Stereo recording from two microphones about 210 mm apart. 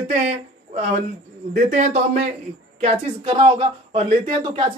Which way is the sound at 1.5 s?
35° right (ahead or behind).